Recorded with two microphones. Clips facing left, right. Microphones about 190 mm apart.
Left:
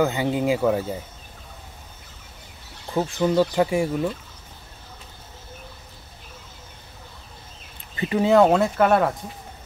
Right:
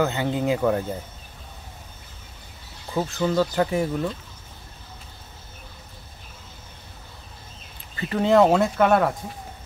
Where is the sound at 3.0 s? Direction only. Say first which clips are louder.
Left 2 dB; 15° left (ahead or behind).